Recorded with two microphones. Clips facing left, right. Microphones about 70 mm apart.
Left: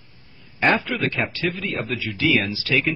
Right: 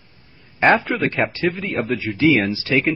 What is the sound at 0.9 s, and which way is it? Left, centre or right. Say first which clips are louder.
A man's voice: right 4 dB; right.